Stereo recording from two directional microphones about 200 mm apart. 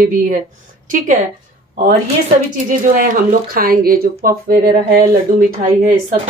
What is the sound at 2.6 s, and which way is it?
Speech, 40° right (ahead or behind).